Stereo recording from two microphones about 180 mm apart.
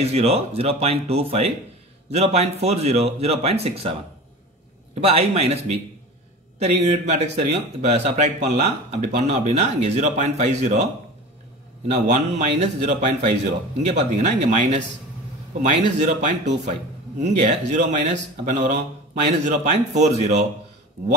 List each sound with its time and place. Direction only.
0.0 s speech: 35° right (ahead or behind)
5.0 s speech: 35° right (ahead or behind)
11.9 s speech: 40° right (ahead or behind)
16.2 s speech: 40° right (ahead or behind)